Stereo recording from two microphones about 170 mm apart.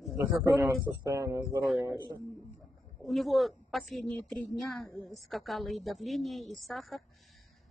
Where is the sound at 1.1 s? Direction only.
15° right (ahead or behind).